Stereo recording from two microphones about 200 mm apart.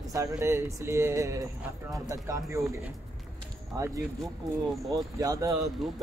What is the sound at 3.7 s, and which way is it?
Speech, 15° right (ahead or behind).